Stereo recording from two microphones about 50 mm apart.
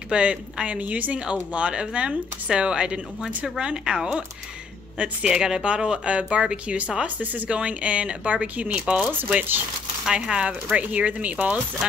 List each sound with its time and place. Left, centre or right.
0.1 s speech: right
9.3 s speech: right
10.0 s speech: centre